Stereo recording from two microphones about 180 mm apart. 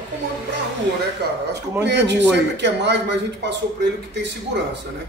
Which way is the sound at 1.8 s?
75° right (ahead or behind).